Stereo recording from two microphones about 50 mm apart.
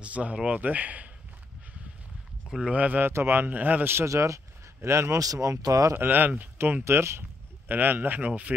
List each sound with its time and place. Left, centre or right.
0.0 s speech: right
2.6 s speech: right
3.1 s speech: right
4.0 s speech: right
4.8 s speech: right
5.9 s speech: right
6.8 s speech: right
7.6 s speech: right